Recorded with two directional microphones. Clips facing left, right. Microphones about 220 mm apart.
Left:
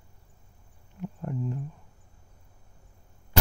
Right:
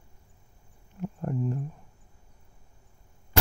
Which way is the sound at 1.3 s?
45° right (ahead or behind).